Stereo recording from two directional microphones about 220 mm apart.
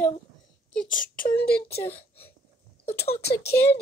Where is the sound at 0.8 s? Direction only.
40° left (ahead or behind).